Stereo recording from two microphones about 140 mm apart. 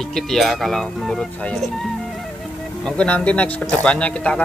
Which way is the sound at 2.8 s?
5° left (ahead or behind).